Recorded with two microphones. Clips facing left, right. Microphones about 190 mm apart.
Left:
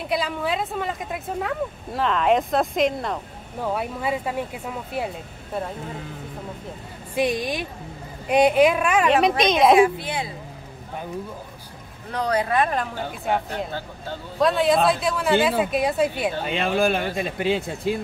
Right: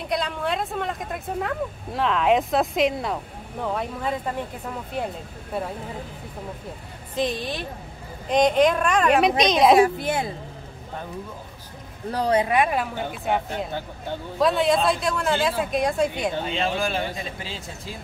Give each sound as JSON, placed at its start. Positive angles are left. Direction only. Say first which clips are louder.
{"t": 0.0, "sound": "speech", "louder": "left 1 dB", "side_deg": 5}
{"t": 7.2, "sound": "speech", "louder": "left 3 dB", "side_deg": 10}
{"t": 9.8, "sound": "a woman's voice", "louder": "even", "side_deg": -45}
{"t": 12.1, "sound": "speech", "louder": "right 2 dB", "side_deg": -30}
{"t": 13.1, "sound": "speech", "louder": "left 1 dB", "side_deg": 0}
{"t": 14.4, "sound": "speech", "louder": "left 1 dB", "side_deg": 0}
{"t": 16.4, "sound": "speech", "louder": "left 4 dB", "side_deg": 55}